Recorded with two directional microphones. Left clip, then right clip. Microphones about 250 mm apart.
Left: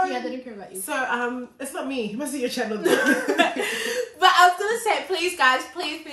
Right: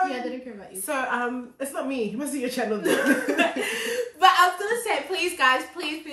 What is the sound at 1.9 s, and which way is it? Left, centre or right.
A woman's voice, centre.